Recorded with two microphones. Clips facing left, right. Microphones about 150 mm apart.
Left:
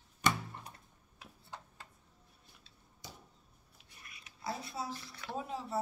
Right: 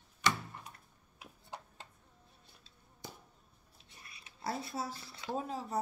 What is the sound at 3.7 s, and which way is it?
Biting, 30° right (ahead or behind).